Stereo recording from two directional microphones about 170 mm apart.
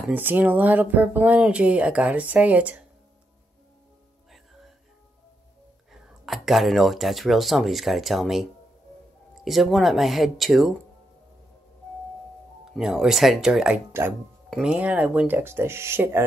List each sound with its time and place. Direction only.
0.1 s speech: 10° right (ahead or behind)
6.2 s speech: centre (ahead or behind)
12.7 s speech: 5° right (ahead or behind)